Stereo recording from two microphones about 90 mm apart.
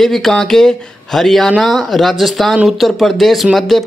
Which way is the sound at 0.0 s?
5° left (ahead or behind).